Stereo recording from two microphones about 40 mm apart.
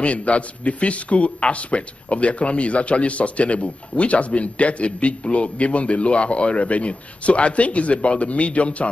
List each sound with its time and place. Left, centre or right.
0.0 s a man's voice: left